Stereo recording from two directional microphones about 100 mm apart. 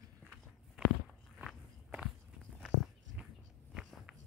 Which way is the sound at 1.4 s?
10° right (ahead or behind).